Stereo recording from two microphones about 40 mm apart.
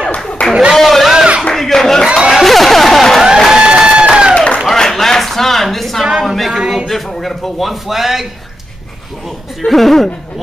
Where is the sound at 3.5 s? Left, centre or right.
Right.